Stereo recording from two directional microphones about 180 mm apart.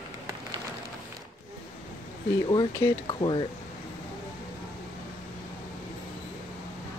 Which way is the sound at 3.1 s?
30° left (ahead or behind).